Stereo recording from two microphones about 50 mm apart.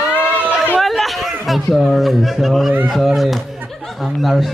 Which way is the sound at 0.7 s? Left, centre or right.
Centre.